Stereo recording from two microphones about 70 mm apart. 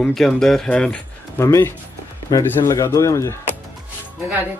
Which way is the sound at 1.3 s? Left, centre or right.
Left.